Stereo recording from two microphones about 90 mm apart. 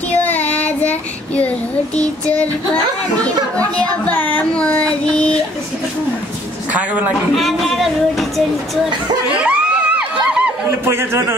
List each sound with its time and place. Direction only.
0.1 s child singing: 20° left (ahead or behind)
3.5 s speech: 15° left (ahead or behind)
6.7 s a woman's voice: 15° right (ahead or behind)
7.3 s speech: centre (ahead or behind)
9.3 s a sound: 15° right (ahead or behind)
10.9 s a man's voice: 25° right (ahead or behind)